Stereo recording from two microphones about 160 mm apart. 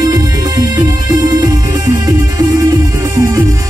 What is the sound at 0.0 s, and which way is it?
Music, 25° right (ahead or behind).